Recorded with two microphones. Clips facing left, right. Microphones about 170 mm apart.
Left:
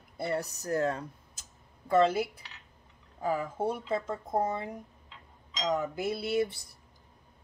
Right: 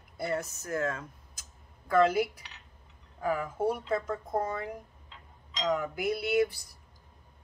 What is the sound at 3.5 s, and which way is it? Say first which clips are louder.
Speech: right 2 dB; 10° right (ahead or behind).